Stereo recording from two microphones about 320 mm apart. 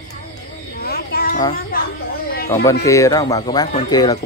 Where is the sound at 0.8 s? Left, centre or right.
Left.